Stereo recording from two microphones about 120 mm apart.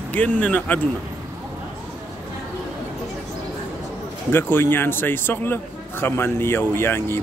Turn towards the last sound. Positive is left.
turn(degrees=20)  # may be behind; listen again after turning